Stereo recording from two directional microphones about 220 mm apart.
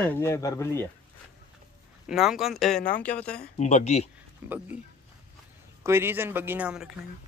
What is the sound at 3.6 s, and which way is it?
Speech, 30° left (ahead or behind).